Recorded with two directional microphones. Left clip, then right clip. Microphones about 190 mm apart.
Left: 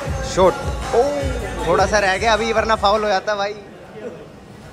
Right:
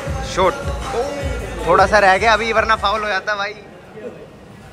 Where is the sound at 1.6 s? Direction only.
10° left (ahead or behind).